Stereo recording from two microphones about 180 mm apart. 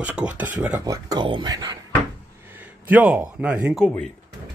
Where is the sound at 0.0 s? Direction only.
10° right (ahead or behind).